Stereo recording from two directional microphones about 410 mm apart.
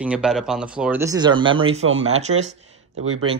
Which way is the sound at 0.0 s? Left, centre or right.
Centre.